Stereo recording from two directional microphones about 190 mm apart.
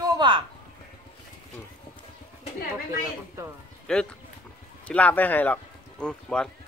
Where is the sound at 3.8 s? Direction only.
5° left (ahead or behind).